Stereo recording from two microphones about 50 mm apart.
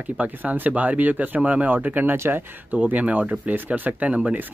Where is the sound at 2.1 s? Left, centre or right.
Right.